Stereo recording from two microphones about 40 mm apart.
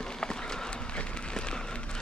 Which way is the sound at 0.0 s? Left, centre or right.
Centre.